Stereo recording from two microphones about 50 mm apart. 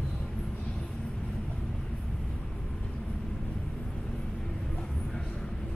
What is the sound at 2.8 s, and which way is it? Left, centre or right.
Vehicle, centre.